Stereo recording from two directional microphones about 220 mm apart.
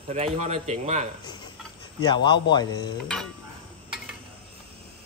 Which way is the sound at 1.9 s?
20° left (ahead or behind).